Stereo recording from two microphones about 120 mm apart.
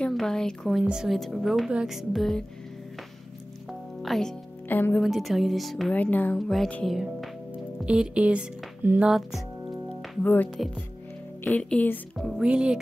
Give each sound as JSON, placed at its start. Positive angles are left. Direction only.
{"t": 0.0, "sound": "speech", "side_deg": 5}
{"t": 4.0, "sound": "speech", "side_deg": 0}
{"t": 4.6, "sound": "speech", "side_deg": 15}
{"t": 5.0, "sound": "speech", "side_deg": 0}
{"t": 5.9, "sound": "speech", "side_deg": 15}
{"t": 6.3, "sound": "speech", "side_deg": 0}
{"t": 7.0, "sound": "speech", "side_deg": -10}
{"t": 9.8, "sound": "music", "side_deg": 15}
{"t": 11.4, "sound": "speech", "side_deg": 10}
{"t": 12.2, "sound": "speech", "side_deg": 0}